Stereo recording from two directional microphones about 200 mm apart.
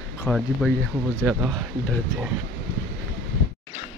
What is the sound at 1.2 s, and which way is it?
Speech, 15° right (ahead or behind).